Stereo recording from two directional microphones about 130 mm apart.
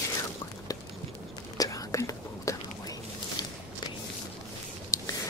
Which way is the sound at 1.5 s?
25° left (ahead or behind).